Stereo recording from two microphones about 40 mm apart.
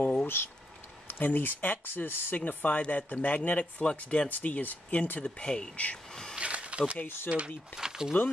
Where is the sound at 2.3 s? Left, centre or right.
Left.